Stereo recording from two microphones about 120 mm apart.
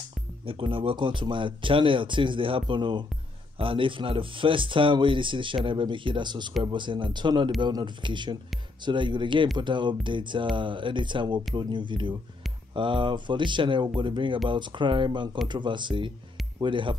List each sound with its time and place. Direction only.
0.5 s speech: 45° right (ahead or behind)